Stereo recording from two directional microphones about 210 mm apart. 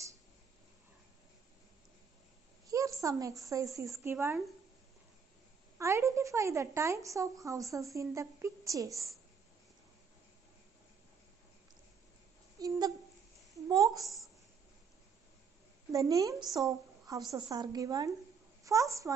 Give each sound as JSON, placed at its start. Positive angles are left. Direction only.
{"t": 2.7, "sound": "a woman's voice", "side_deg": -15}
{"t": 5.8, "sound": "a woman's voice", "side_deg": -15}
{"t": 12.5, "sound": "a sound", "side_deg": -20}
{"t": 13.7, "sound": "a woman's voice", "side_deg": -15}
{"t": 14.0, "sound": "a woman's voice", "side_deg": 0}
{"t": 15.9, "sound": "a woman's voice", "side_deg": -15}